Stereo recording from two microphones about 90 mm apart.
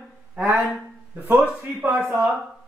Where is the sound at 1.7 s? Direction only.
15° right (ahead or behind).